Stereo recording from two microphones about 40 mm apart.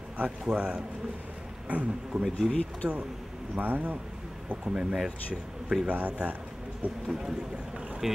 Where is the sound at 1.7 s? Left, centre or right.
Right.